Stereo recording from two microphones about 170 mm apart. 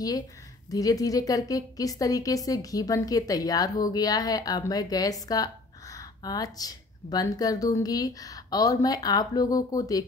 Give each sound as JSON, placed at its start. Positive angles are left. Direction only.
{"t": 0.7, "sound": "a woman's voice", "side_deg": 20}